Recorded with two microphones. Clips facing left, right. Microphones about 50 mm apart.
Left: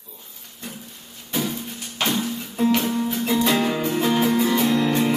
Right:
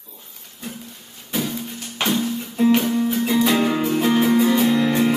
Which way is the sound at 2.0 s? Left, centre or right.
Centre.